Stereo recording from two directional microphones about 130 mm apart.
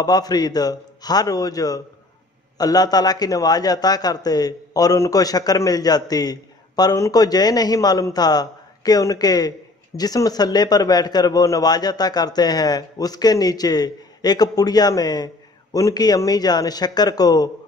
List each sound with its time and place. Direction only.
0.0 s a man's voice: 30° left (ahead or behind)